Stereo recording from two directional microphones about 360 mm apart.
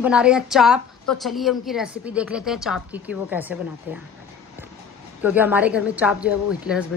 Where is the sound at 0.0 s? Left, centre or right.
Centre.